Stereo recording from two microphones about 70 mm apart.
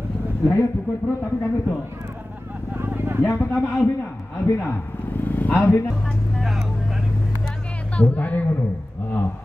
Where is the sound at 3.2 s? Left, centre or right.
Left.